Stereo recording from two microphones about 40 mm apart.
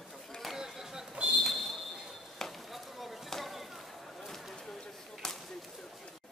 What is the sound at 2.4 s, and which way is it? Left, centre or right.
Chop, centre.